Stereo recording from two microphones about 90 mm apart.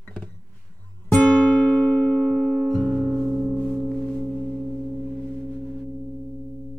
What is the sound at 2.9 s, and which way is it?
Music, 30° right (ahead or behind).